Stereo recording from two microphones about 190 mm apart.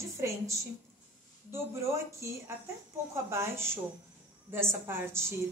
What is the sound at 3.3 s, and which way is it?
A woman's voice, 15° right (ahead or behind).